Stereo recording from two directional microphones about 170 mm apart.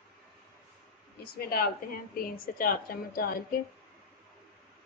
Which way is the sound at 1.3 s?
60° left (ahead or behind).